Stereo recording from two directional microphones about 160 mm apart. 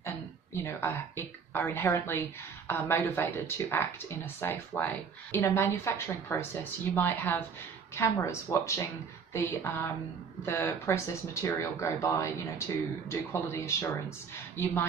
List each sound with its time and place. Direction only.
0.7 s speech: 15° left (ahead or behind)